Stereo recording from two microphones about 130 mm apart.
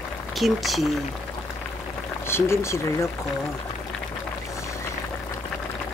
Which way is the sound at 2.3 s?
20° left (ahead or behind).